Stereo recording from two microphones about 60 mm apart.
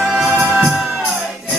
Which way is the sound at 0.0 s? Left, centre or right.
Centre.